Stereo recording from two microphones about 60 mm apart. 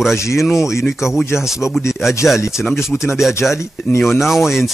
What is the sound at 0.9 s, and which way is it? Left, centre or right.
Speech, centre.